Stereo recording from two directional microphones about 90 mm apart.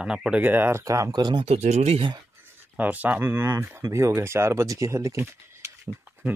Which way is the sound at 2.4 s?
20° right (ahead or behind).